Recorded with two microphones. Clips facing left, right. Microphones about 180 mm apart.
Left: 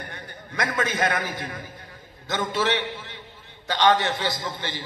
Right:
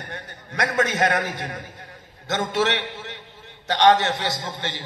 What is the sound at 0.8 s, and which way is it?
A man's voice, 75° right (ahead or behind).